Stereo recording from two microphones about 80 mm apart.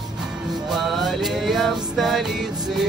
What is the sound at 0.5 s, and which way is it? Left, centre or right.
Music, centre.